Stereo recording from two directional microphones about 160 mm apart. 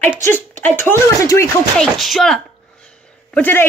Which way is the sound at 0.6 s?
15° left (ahead or behind).